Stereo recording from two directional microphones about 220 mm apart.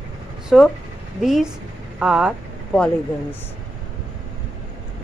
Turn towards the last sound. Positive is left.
turn(degrees=5)  # may be behind; listen again after turning